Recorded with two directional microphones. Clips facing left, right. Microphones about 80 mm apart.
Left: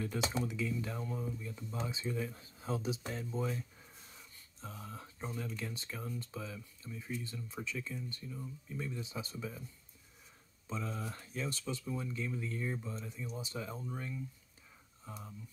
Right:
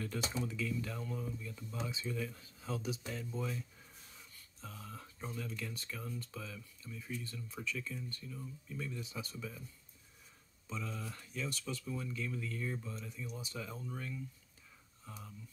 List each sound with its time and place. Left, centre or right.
0.4 s speech: centre
10.7 s speech: left